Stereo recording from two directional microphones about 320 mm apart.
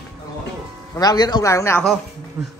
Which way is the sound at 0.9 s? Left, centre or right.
Centre.